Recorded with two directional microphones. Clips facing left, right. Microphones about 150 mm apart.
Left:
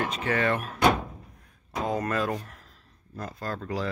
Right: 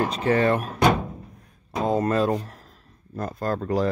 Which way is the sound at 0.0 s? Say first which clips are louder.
Right 6 dB; 35° right (ahead or behind).